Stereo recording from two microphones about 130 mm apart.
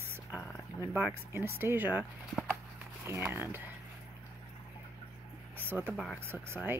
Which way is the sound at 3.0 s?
20° right (ahead or behind).